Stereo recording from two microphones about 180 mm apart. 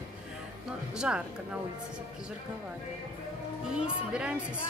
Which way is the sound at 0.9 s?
5° right (ahead or behind).